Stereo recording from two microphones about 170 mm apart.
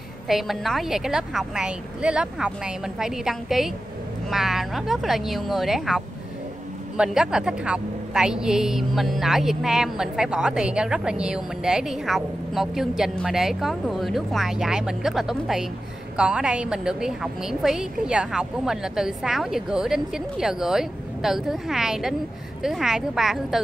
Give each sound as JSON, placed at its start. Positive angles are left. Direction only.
{"t": 0.3, "sound": "a woman's voice", "side_deg": 0}